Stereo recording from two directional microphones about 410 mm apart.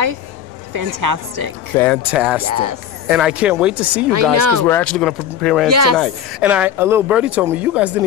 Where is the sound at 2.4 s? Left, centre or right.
Right.